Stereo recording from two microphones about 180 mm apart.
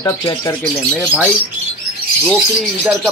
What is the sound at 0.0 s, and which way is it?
Speech, 20° left (ahead or behind).